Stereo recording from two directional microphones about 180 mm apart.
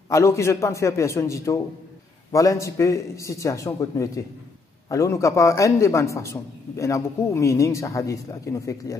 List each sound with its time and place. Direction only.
0.1 s a man's voice: 15° left (ahead or behind)